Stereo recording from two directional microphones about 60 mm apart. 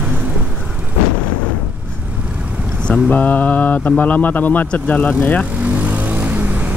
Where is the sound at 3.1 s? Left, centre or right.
Left.